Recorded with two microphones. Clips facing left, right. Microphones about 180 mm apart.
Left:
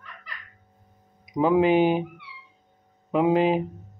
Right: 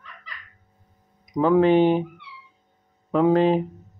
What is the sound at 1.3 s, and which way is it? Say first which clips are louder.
Speech: right 2 dB; 10° left (ahead or behind).